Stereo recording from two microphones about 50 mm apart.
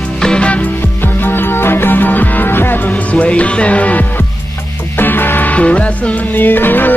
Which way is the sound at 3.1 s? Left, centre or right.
Left.